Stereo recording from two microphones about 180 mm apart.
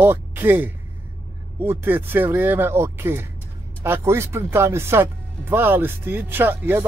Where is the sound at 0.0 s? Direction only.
10° right (ahead or behind).